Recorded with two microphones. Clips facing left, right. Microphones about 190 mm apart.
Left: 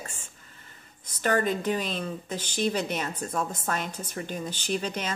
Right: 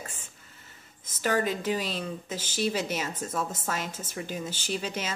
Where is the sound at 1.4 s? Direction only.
50° left (ahead or behind).